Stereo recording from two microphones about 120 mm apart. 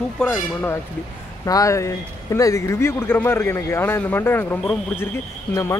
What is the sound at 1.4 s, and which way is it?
Speech, 30° left (ahead or behind).